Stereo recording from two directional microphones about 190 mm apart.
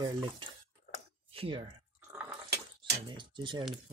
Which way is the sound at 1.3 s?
30° right (ahead or behind).